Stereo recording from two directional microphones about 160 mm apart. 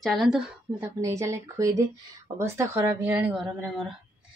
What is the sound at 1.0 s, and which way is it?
A woman's voice, 20° right (ahead or behind).